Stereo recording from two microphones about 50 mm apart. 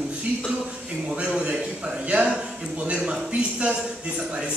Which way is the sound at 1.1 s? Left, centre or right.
Centre.